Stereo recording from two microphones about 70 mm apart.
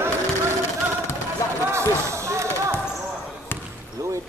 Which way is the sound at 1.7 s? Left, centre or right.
Right.